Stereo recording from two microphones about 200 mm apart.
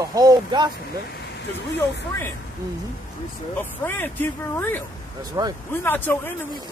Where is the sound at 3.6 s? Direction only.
10° left (ahead or behind).